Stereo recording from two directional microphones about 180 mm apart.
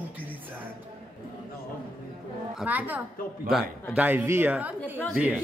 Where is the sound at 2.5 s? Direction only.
10° right (ahead or behind).